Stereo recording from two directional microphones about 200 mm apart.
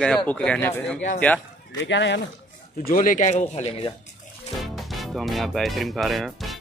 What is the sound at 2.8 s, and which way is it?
Speech, 45° left (ahead or behind).